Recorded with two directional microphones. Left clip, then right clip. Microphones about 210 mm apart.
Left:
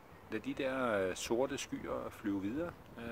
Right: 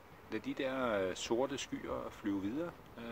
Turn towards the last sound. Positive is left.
turn(degrees=5)  # may be behind; listen again after turning